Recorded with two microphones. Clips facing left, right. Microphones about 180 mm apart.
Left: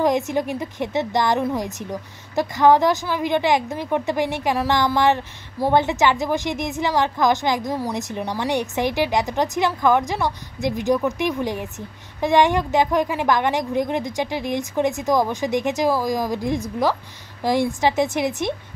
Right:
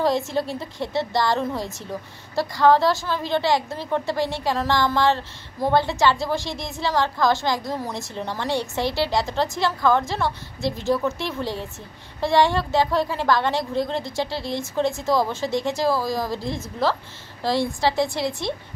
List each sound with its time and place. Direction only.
0.0 s a woman's voice: 15° left (ahead or behind)